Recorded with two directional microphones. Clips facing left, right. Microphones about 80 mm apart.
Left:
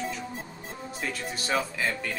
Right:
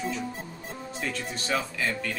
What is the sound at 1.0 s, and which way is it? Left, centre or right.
Speech, centre.